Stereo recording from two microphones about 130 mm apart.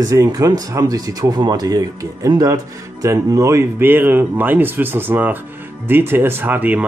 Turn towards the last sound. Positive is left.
turn(degrees=-10)  # may be behind; listen again after turning